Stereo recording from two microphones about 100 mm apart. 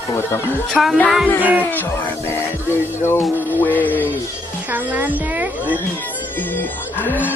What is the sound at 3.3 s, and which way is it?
Speech, 20° right (ahead or behind).